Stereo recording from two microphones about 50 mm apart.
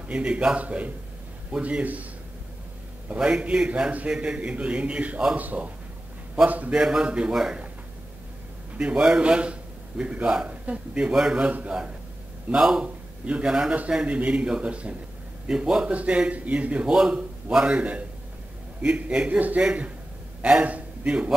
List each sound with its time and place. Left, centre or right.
0.1 s a man's voice: right
3.2 s a man's voice: centre
6.7 s a man's voice: centre
8.7 s a man's voice: right
12.8 s a sound: right
13.5 s a man's voice: centre
15.9 s a man's voice: right
16.8 s a man's voice: centre